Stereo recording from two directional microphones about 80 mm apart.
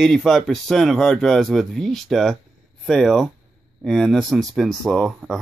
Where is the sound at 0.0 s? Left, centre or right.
Centre.